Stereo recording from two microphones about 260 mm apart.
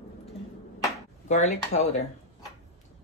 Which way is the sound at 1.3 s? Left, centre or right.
Left.